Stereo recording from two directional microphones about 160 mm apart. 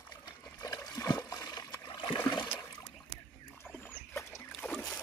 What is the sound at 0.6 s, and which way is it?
Trickle, 25° left (ahead or behind).